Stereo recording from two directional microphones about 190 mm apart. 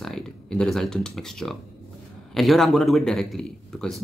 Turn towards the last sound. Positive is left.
turn(degrees=0)  # may be behind; listen again after turning